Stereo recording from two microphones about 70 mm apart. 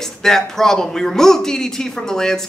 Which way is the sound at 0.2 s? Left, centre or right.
Centre.